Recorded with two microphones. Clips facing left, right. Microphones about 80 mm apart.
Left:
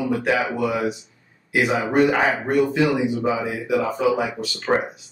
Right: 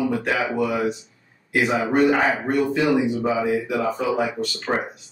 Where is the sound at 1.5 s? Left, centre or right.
Centre.